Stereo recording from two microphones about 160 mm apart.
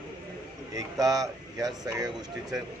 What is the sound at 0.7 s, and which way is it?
Speech, 20° right (ahead or behind).